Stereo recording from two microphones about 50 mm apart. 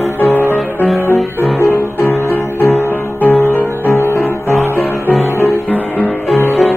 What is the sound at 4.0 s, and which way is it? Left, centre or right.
Music, left.